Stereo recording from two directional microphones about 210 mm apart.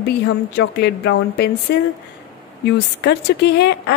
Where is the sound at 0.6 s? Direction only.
50° left (ahead or behind).